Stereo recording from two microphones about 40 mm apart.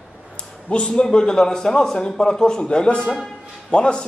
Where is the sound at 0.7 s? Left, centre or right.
Left.